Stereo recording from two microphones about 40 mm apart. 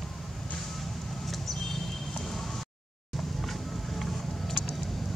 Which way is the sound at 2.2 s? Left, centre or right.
Centre.